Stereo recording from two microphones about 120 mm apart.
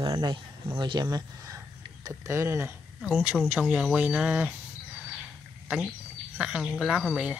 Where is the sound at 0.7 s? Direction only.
40° right (ahead or behind).